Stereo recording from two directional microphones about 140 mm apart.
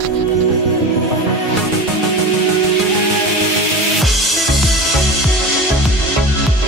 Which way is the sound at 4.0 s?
Centre (ahead or behind).